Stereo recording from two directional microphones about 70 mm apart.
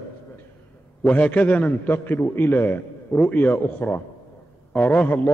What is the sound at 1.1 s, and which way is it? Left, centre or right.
A man's voice, left.